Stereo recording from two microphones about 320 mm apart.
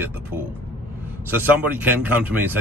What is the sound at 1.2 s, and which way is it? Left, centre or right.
Speech, centre.